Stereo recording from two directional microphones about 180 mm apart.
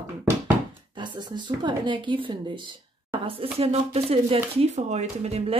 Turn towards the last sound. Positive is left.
turn(degrees=-35)  # may be behind; listen again after turning